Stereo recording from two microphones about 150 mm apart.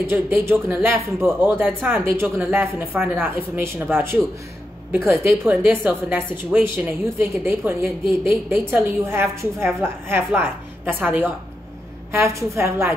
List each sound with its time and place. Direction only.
0.0 s speech: 15° right (ahead or behind)